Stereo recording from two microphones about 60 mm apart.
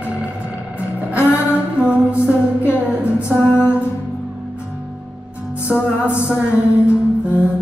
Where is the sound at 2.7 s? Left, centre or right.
Right.